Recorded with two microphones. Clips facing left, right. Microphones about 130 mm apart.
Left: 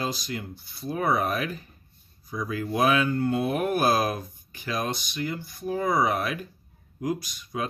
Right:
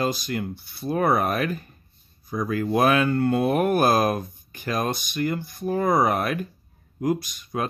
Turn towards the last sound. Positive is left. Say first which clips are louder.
# right 3 dB
turn(degrees=-50)  # may be behind; listen again after turning